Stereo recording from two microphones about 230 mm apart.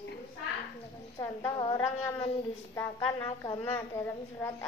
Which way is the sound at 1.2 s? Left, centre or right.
Centre.